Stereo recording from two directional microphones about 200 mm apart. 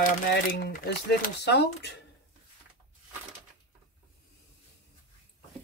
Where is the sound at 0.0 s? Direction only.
45° left (ahead or behind).